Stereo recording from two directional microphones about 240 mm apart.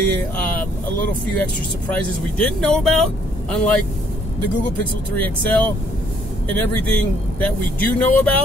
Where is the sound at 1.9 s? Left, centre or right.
Centre.